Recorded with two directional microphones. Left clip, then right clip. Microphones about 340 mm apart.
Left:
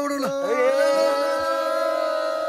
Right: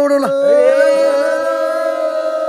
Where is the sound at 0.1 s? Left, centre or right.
Centre.